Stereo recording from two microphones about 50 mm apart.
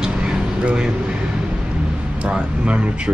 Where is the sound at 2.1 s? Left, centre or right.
Right.